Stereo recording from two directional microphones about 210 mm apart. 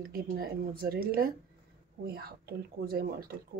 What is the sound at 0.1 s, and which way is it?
Speech, 45° right (ahead or behind).